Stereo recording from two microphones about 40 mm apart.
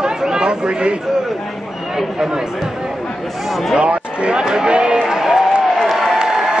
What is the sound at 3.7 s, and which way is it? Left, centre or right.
Speech, right.